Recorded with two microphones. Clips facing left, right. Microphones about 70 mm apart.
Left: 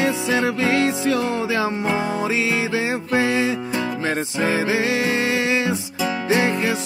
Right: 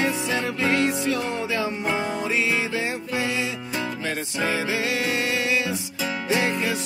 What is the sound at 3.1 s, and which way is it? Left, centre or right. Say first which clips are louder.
Music: left 10 dB; left.